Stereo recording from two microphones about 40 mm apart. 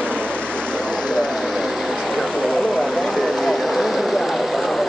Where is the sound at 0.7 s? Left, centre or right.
Left.